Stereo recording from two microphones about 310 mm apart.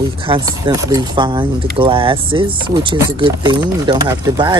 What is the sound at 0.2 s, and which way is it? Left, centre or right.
Speech, centre.